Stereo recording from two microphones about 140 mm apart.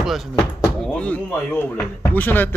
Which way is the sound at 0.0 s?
Centre (ahead or behind).